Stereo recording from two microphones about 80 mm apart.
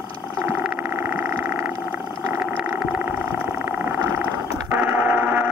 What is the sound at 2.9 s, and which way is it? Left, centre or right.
Vehicle, right.